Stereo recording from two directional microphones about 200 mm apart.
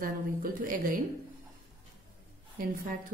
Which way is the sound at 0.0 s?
45° right (ahead or behind).